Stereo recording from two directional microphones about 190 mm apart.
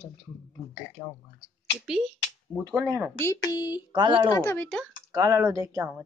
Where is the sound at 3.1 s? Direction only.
15° left (ahead or behind).